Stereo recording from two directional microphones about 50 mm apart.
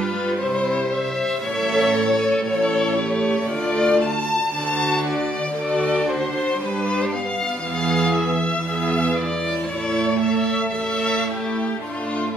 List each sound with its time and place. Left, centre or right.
1.7 s music: centre
5.8 s music: centre
7.9 s music: centre